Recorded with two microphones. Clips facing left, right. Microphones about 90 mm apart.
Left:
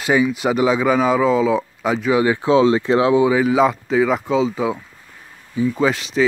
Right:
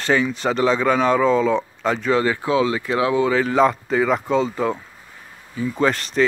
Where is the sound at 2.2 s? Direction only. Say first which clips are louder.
Left 5 dB; 20° left (ahead or behind).